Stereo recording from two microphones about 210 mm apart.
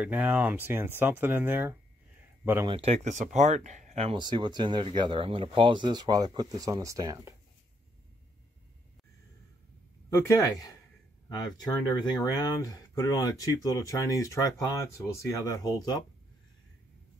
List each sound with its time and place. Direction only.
0.0 s speech: 5° right (ahead or behind)
2.7 s speech: 30° right (ahead or behind); by 7.3 s 15° right (ahead or behind)
10.0 s speech: 15° left (ahead or behind)